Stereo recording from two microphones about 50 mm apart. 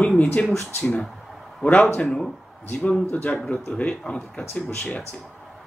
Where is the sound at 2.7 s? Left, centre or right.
Left.